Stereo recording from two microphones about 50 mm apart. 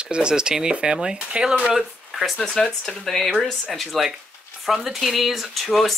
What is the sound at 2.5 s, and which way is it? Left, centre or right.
Speech, centre.